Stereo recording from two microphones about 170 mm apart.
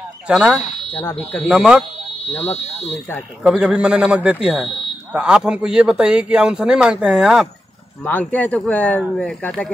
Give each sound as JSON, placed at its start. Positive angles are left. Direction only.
{"t": 0.3, "sound": "speech", "side_deg": 0}
{"t": 2.3, "sound": "speech", "side_deg": 40}
{"t": 3.4, "sound": "speech", "side_deg": -5}
{"t": 8.0, "sound": "speech", "side_deg": 10}